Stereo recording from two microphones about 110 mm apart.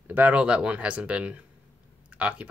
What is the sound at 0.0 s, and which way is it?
Speech, 15° right (ahead or behind).